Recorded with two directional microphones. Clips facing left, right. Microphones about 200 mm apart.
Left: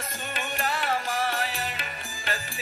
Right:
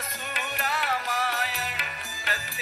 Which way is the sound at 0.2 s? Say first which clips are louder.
Left 3 dB; 30° left (ahead or behind).